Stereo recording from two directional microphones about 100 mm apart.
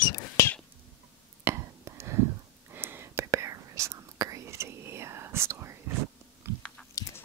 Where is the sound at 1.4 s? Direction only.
25° right (ahead or behind).